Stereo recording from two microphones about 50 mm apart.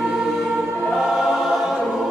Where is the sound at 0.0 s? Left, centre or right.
Centre.